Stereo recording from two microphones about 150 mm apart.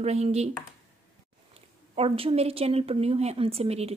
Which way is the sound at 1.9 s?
40° right (ahead or behind).